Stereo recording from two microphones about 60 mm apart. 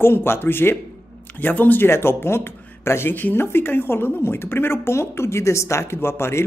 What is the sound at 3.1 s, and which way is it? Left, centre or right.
Speech, left.